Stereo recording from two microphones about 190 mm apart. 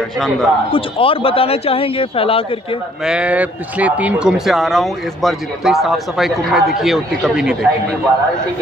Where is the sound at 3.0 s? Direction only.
5° right (ahead or behind).